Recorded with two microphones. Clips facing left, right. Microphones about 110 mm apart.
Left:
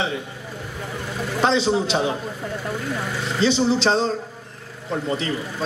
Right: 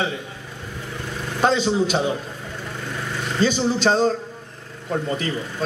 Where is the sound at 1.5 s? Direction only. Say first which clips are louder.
Even; 45° right (ahead or behind).